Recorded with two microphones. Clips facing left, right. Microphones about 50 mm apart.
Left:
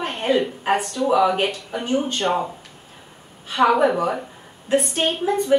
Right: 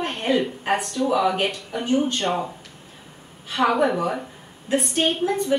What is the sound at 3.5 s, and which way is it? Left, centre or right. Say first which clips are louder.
Speech: left 3 dB; centre.